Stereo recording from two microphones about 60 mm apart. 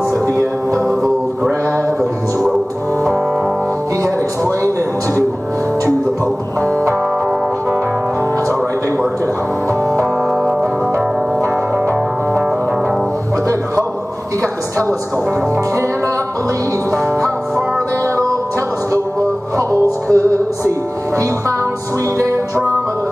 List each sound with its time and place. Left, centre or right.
0.1 s music: right
18.0 s music: right
19.5 s music: right